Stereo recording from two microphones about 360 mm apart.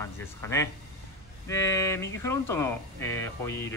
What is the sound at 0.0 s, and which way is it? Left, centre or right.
Speech, centre.